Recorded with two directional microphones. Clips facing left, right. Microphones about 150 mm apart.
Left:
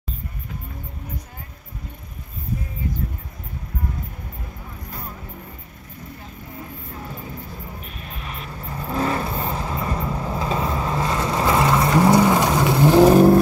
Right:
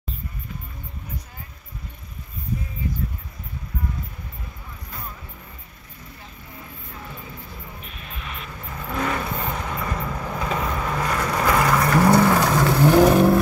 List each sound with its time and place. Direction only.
6.9 s vehicle: 30° left (ahead or behind)